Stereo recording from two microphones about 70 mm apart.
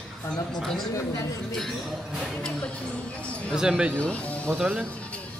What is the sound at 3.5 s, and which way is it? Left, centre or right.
Speech, centre.